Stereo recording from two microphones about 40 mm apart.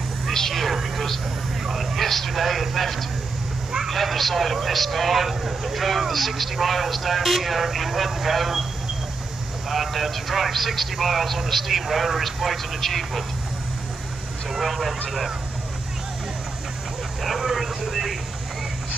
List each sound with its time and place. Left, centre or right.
0.3 s a sound: centre
1.7 s a man's voice: centre
9.7 s a man's voice: centre
14.6 s a man's voice: centre
17.2 s vehicle: centre